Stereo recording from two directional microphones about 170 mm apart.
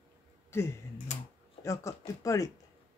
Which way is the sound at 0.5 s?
15° left (ahead or behind).